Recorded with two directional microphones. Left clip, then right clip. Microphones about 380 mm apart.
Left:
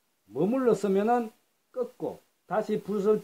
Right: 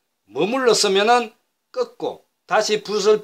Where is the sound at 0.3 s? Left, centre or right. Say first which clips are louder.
Right 8 dB; centre.